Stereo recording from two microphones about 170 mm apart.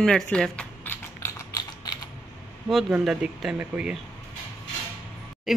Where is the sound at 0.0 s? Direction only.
5° left (ahead or behind).